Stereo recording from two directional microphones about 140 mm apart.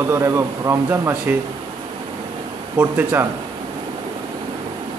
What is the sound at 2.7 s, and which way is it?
Speech, 15° right (ahead or behind).